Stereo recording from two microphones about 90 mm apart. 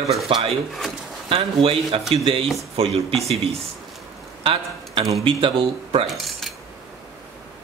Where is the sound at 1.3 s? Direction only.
90° right.